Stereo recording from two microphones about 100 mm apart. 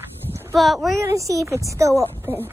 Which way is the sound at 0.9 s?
30° right (ahead or behind).